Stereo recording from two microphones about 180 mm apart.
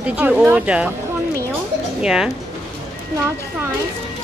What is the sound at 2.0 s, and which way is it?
Speech, 5° right (ahead or behind).